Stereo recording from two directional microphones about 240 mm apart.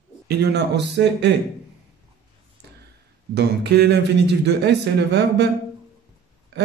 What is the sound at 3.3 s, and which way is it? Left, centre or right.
Speech, right.